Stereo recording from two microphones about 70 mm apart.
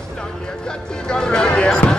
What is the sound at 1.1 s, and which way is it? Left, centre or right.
Basketball bounce, centre.